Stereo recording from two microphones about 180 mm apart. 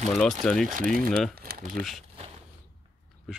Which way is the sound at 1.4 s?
55° right (ahead or behind).